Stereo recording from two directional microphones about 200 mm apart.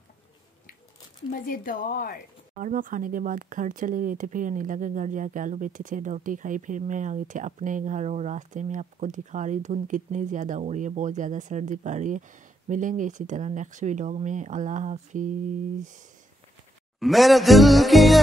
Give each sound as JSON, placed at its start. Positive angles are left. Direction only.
{"t": 1.4, "sound": "speech", "side_deg": 45}
{"t": 2.6, "sound": "speech", "side_deg": -40}
{"t": 17.0, "sound": "speech", "side_deg": 0}